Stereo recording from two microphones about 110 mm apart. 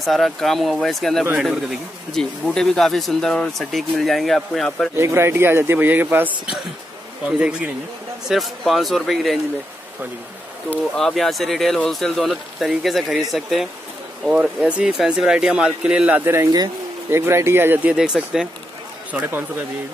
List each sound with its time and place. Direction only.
0.0 s speech: centre (ahead or behind)
4.9 s speech: 25° right (ahead or behind)
8.3 s speech: centre (ahead or behind)
11.0 s speech: 5° left (ahead or behind)
19.1 s speech: 15° right (ahead or behind)